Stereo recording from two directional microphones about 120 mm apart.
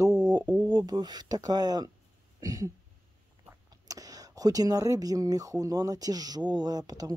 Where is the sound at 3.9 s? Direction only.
30° right (ahead or behind).